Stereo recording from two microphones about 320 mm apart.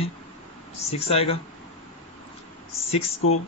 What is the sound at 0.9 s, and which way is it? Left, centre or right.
Speech, centre.